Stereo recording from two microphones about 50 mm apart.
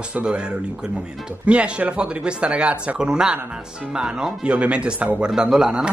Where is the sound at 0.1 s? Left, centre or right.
Centre.